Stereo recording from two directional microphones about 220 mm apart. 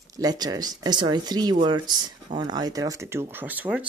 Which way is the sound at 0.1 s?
15° right (ahead or behind).